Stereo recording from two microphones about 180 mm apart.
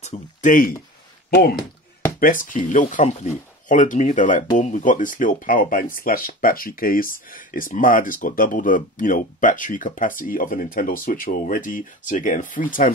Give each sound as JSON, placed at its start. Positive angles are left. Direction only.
{"t": 0.0, "sound": "speech", "side_deg": 40}
{"t": 2.1, "sound": "speech", "side_deg": 50}